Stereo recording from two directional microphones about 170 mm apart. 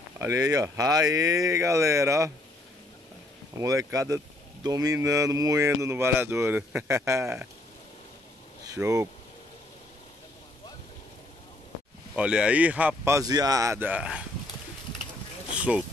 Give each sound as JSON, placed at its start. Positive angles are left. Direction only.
{"t": 0.2, "sound": "speech", "side_deg": -20}
{"t": 3.5, "sound": "speech", "side_deg": -20}
{"t": 8.6, "sound": "speech", "side_deg": -20}
{"t": 12.2, "sound": "speech", "side_deg": -5}
{"t": 15.5, "sound": "a sound", "side_deg": -5}